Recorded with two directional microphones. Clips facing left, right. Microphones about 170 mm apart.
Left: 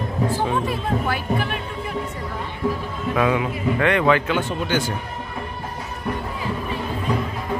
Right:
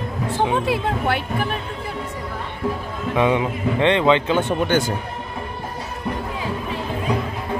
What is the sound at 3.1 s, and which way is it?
Speech, 25° right (ahead or behind).